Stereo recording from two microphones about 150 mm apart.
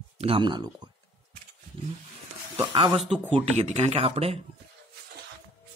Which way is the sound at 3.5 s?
50° right (ahead or behind).